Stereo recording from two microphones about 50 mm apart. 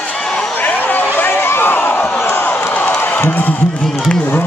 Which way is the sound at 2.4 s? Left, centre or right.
Left.